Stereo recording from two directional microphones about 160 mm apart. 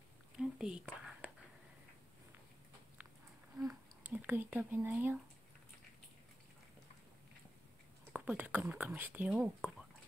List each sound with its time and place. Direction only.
0.4 s whispering: 5° right (ahead or behind)
3.6 s speech: 10° right (ahead or behind)
8.0 s speech: 10° right (ahead or behind)